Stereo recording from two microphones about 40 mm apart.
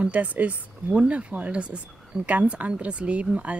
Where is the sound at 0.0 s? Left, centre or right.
Right.